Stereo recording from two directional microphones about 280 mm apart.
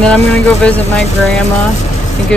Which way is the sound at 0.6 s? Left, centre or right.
Centre.